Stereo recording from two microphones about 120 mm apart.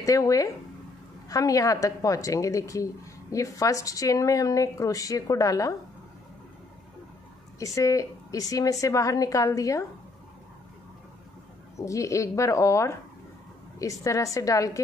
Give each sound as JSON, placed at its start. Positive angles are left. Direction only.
{"t": 0.0, "sound": "a woman's voice", "side_deg": 30}
{"t": 7.5, "sound": "a woman's voice", "side_deg": 25}
{"t": 11.7, "sound": "a woman's voice", "side_deg": 25}